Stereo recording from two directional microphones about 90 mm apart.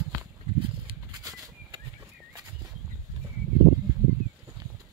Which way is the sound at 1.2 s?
45° right (ahead or behind).